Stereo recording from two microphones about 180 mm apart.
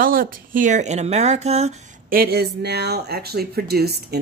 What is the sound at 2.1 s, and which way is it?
Speech, 60° right (ahead or behind).